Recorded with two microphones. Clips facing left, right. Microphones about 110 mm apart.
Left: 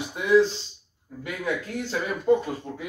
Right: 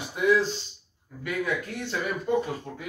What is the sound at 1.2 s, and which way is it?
Speech, 25° left (ahead or behind).